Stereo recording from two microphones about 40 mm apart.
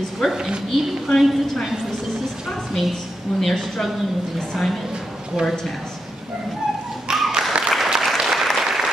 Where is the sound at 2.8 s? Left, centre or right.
Centre.